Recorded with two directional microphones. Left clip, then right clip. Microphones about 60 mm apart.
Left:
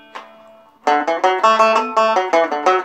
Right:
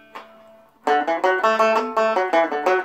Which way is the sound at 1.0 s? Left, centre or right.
Centre.